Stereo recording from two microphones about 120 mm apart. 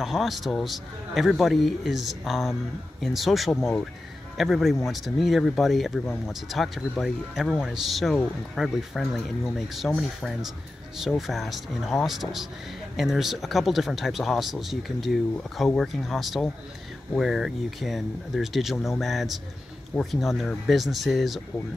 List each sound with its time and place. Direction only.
0.0 s speech: centre (ahead or behind)